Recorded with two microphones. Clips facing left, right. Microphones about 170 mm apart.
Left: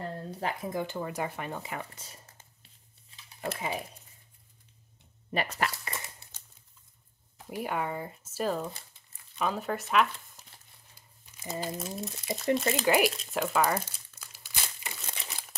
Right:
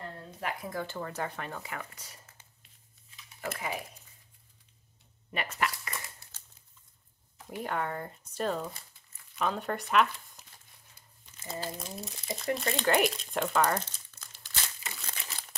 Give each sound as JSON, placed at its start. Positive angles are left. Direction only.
{"t": 0.3, "sound": "speech", "side_deg": 30}
{"t": 3.1, "sound": "a sound", "side_deg": 30}
{"t": 5.3, "sound": "crumpling", "side_deg": 35}
{"t": 7.6, "sound": "speech", "side_deg": 10}
{"t": 11.2, "sound": "crumpling", "side_deg": 10}
{"t": 11.8, "sound": "speech", "side_deg": 0}
{"t": 12.5, "sound": "crumpling", "side_deg": 5}